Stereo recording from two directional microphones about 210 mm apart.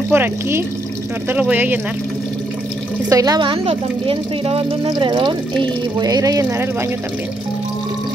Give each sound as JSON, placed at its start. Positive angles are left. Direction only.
{"t": 0.1, "sound": "speech", "side_deg": -10}
{"t": 3.1, "sound": "a woman's voice", "side_deg": -15}